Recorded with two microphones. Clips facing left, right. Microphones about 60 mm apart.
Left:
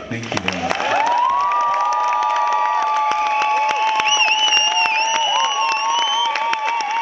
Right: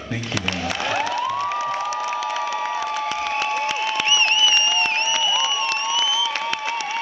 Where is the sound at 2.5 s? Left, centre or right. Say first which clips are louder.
Left 7 dB; left.